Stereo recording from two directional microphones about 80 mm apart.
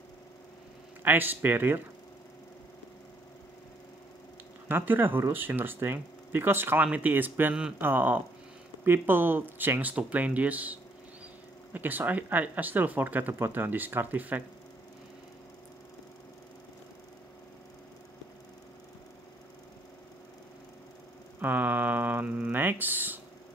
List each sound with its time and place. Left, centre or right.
1.0 s speech: right
4.6 s speech: right
21.4 s speech: right